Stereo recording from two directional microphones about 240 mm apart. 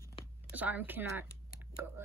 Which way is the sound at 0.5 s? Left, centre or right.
Centre.